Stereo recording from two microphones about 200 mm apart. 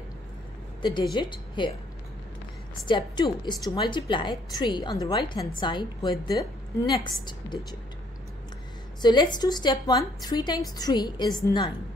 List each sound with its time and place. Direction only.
0.8 s a woman's voice: 25° left (ahead or behind)
2.9 s a woman's voice: 25° left (ahead or behind)
9.0 s a woman's voice: 20° left (ahead or behind)